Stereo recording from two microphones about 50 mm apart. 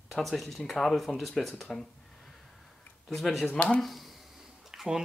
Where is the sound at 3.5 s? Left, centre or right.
Centre.